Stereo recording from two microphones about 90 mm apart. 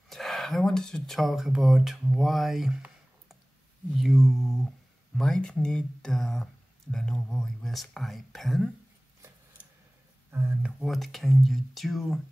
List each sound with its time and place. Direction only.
0.1 s speech: centre (ahead or behind)
10.3 s speech: 25° right (ahead or behind)
10.6 s speech: centre (ahead or behind)